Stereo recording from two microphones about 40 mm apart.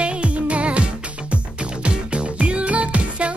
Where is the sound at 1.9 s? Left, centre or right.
Right.